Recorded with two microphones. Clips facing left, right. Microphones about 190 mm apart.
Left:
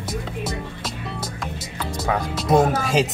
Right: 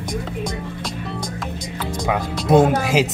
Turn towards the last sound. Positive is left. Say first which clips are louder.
# right 3 dB
turn(degrees=-5)  # may be behind; listen again after turning